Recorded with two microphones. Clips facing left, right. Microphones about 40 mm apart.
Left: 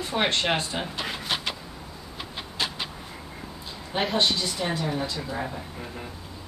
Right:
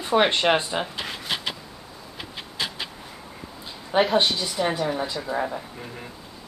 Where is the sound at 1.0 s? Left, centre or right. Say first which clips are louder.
Even; centre.